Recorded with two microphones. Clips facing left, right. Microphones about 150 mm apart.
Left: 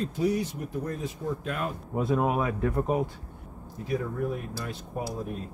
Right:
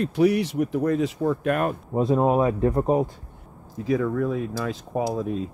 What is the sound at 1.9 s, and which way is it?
Speech, 30° right (ahead or behind).